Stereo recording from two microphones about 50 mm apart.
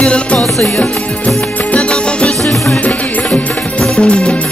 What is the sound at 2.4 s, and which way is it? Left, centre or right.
Music, centre.